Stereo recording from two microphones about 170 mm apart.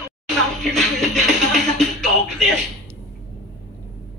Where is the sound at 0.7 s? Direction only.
Centre (ahead or behind).